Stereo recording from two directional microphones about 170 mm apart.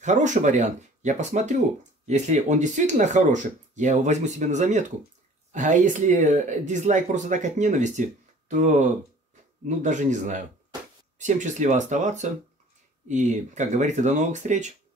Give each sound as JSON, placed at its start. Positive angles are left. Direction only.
{"t": 0.0, "sound": "speech", "side_deg": -45}